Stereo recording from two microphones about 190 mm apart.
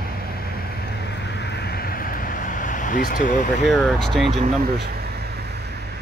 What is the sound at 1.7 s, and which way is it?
Vehicle, 50° left (ahead or behind).